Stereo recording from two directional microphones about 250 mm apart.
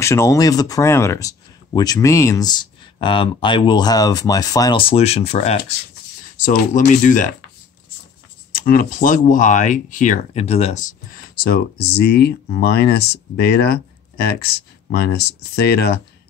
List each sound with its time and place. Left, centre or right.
0.0 s speech: centre; by 7.2 s left
8.5 s speech: left